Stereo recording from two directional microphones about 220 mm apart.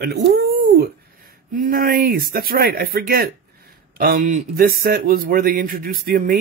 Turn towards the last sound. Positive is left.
turn(degrees=-40)  # may be behind; listen again after turning